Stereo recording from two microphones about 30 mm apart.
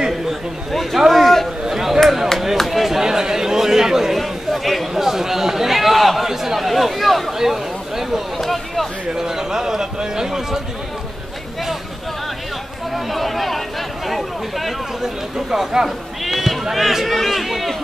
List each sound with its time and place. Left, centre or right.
0.3 s a man's voice: centre
0.9 s speech: centre
1.2 s chatter: centre
1.7 s chop: centre
2.6 s a sound: centre
4.2 s chatter: centre
4.9 s a sound: centre
6.2 s chatter: centre
7.3 s speech: centre
8.4 s speech: centre
9.1 s a man's voice: centre
12.9 s speech: centre
15.0 s a man's voice: centre
16.7 s a man's voice: centre